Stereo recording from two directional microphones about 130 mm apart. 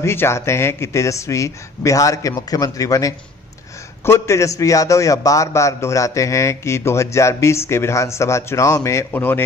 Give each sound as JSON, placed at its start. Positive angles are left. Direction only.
{"t": 0.0, "sound": "a man's voice", "side_deg": 20}